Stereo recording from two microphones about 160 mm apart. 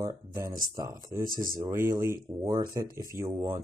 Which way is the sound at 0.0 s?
20° right (ahead or behind).